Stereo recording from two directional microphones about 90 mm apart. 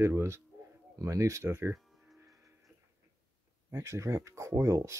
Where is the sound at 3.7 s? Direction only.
35° right (ahead or behind).